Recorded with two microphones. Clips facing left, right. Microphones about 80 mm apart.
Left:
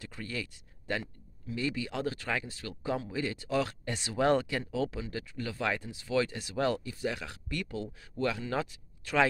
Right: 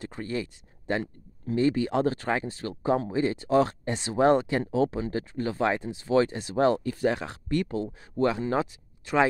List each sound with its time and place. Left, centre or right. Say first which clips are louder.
0.0 s speech: right 7 dB; right
6.8 s speech: right 9 dB; right
7.2 s speech: right 9 dB; right